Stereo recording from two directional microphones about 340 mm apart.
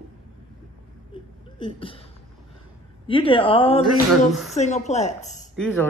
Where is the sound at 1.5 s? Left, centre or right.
Centre.